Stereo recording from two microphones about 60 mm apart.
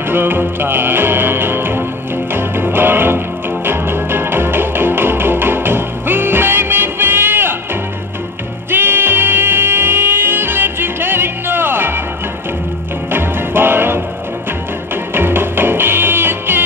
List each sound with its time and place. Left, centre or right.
0.1 s music: right
8.6 s music: right
13.1 s music: right
15.1 s music: right